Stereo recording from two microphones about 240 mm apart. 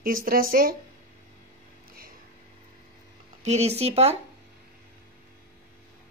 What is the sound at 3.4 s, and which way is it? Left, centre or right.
Speech, right.